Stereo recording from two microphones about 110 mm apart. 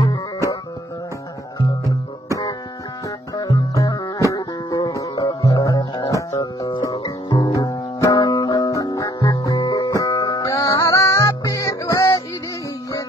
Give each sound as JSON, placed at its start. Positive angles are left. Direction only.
{"t": 1.6, "sound": "music", "side_deg": 35}
{"t": 3.3, "sound": "music", "side_deg": 35}
{"t": 7.0, "sound": "music", "side_deg": 50}
{"t": 7.4, "sound": "music", "side_deg": 30}